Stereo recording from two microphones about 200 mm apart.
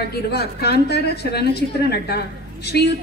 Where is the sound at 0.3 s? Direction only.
55° left (ahead or behind).